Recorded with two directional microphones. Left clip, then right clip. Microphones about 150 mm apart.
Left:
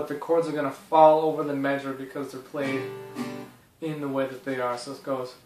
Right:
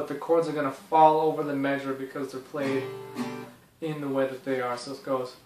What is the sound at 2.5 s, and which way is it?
Speech, 10° right (ahead or behind).